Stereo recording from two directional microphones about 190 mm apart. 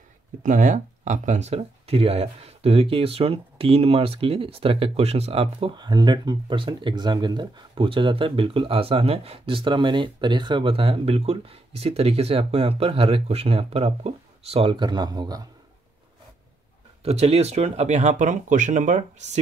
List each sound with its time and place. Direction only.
0.4 s speech: 40° right (ahead or behind); by 15.4 s 20° right (ahead or behind)
17.0 s speech: 35° right (ahead or behind)